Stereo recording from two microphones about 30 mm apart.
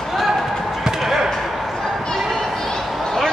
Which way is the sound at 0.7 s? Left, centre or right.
Centre.